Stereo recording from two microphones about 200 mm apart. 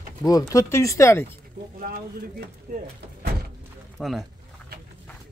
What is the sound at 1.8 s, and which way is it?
Speech, 45° right (ahead or behind).